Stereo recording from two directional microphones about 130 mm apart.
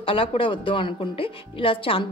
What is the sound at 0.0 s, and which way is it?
A woman's voice, 45° left (ahead or behind).